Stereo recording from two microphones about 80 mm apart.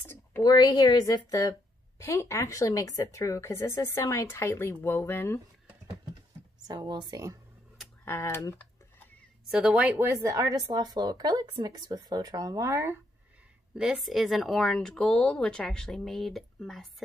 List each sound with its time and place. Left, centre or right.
0.0 s a sound: left
0.4 s speech: left
2.0 s speech: left
6.7 s speech: right
8.0 s tick-tock: left
9.5 s a woman's voice: centre
9.9 s speech: right
10.7 s speech: right
13.7 s speech: centre